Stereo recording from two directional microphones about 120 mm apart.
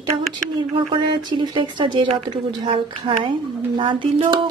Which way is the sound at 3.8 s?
45° right (ahead or behind).